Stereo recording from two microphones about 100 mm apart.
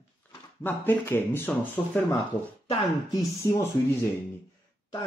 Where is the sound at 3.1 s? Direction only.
35° left (ahead or behind).